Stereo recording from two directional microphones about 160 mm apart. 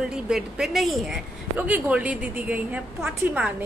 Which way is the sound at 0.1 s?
5° right (ahead or behind).